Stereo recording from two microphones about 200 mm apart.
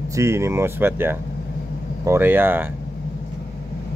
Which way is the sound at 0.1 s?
15° right (ahead or behind).